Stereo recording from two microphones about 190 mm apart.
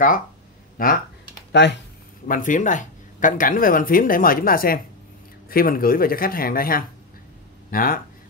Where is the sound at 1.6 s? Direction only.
70° left (ahead or behind).